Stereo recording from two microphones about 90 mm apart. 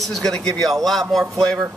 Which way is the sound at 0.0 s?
5° left (ahead or behind).